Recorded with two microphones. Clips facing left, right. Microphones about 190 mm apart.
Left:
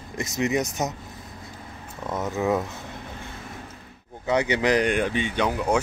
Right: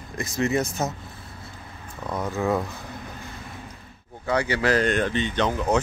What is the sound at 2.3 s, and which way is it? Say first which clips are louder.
Speech: left 1 dB; 20° left (ahead or behind).